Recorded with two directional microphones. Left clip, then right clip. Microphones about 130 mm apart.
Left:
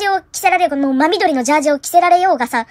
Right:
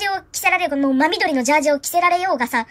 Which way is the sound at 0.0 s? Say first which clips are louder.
Left 5 dB; 15° left (ahead or behind).